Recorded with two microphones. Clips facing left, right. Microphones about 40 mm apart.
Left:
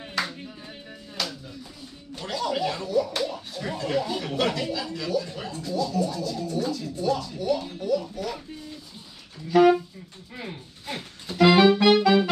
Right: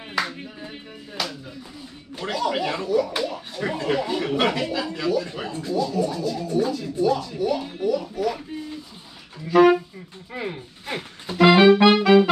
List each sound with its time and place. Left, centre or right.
0.3 s a sound: right
1.2 s speech: centre
2.1 s speech: right
5.3 s speech: right; by 8.4 s centre
9.5 s speech: centre
10.3 s music: right